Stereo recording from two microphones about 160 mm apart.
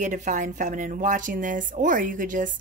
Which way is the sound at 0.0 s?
50° right (ahead or behind).